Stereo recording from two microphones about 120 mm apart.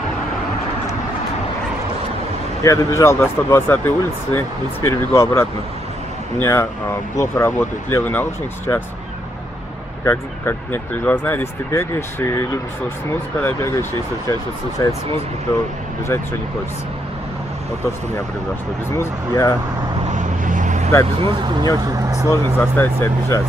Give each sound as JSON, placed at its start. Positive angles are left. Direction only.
{"t": 2.6, "sound": "speech", "side_deg": 25}
{"t": 10.0, "sound": "speech", "side_deg": 20}
{"t": 18.9, "sound": "speech", "side_deg": 25}
{"t": 20.1, "sound": "vehicle", "side_deg": -90}
{"t": 21.2, "sound": "speech", "side_deg": -45}
{"t": 22.3, "sound": "speech", "side_deg": 20}